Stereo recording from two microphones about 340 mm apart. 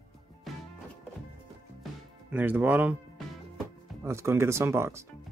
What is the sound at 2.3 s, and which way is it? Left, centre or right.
Speech, centre.